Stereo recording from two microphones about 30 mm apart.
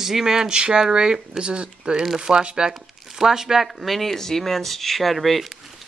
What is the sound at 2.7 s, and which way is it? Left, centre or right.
Speech, centre.